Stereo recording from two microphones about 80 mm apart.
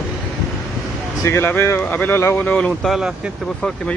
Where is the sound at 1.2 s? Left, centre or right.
Left.